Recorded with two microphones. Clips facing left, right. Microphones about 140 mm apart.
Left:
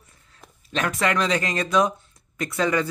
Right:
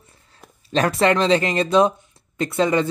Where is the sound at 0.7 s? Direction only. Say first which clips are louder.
Right 6 dB; 35° right (ahead or behind).